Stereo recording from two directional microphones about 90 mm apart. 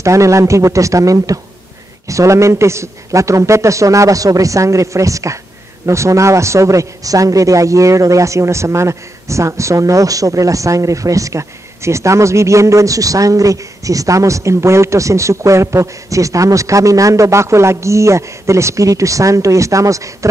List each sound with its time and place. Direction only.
0.0 s a man's voice: 35° right (ahead or behind)